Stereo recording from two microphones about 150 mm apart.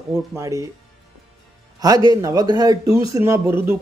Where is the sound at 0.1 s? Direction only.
20° right (ahead or behind).